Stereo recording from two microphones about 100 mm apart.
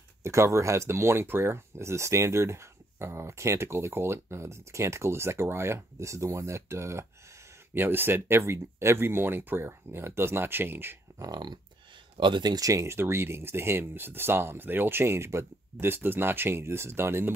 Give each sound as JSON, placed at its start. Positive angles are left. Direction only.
{"t": 0.2, "sound": "speech", "side_deg": -30}
{"t": 11.1, "sound": "speech", "side_deg": -40}